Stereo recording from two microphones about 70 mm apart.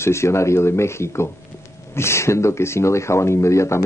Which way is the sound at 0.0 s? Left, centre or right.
Left.